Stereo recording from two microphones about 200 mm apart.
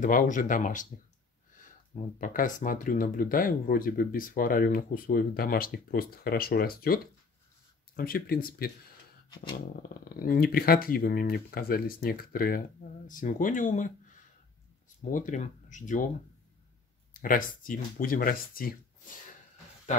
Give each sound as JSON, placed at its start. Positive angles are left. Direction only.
{"t": 0.0, "sound": "speech", "side_deg": 40}
{"t": 2.1, "sound": "speech", "side_deg": 40}
{"t": 15.0, "sound": "speech", "side_deg": 40}
{"t": 17.1, "sound": "speech", "side_deg": 45}